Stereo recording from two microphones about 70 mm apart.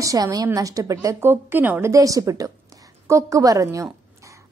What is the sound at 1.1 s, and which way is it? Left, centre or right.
Speech, right.